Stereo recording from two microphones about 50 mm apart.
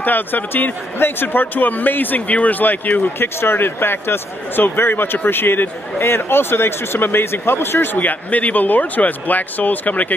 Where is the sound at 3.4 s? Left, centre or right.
Left.